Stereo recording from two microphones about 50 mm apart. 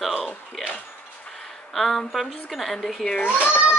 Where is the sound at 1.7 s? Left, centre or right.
Centre.